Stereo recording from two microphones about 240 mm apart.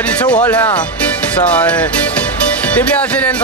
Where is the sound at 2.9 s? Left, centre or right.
Centre.